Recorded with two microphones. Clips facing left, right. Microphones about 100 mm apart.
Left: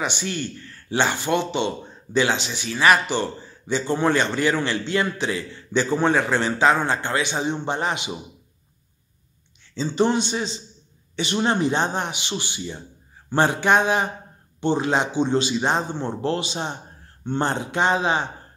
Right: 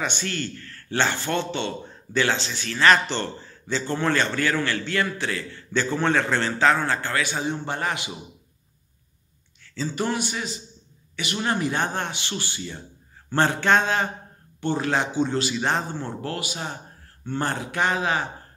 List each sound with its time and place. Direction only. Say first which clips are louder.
0.0 s a man's voice: left 2 dB; 15° left (ahead or behind)
9.8 s a man's voice: left 6 dB; 25° left (ahead or behind)